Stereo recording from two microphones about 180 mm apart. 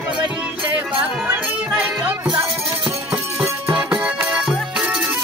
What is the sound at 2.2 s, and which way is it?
Music, 20° right (ahead or behind).